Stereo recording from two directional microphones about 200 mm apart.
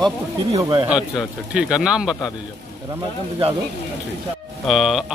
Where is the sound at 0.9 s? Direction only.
5° right (ahead or behind).